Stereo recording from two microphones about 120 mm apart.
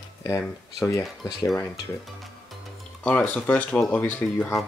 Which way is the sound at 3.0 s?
10° left (ahead or behind).